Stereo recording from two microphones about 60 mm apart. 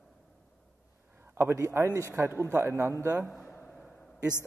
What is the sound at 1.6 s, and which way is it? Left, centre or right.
A man's voice, right.